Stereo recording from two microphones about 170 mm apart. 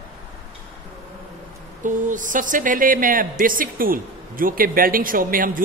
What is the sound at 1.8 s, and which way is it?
Speech, 50° right (ahead or behind).